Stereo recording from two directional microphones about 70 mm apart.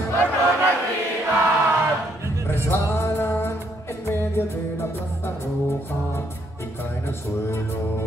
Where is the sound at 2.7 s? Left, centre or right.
Left.